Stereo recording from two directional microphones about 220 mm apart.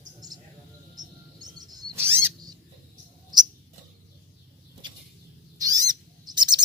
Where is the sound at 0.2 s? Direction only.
15° right (ahead or behind).